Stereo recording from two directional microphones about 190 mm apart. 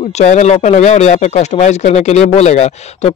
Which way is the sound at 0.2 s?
40° left (ahead or behind).